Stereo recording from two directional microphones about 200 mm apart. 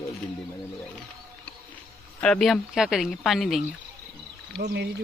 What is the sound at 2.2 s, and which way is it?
Speech, centre (ahead or behind).